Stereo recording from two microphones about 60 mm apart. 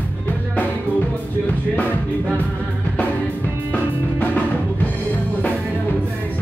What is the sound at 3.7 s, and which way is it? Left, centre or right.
Music, left.